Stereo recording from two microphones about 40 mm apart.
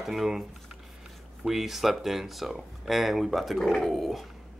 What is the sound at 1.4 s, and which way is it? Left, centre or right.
Speech, centre.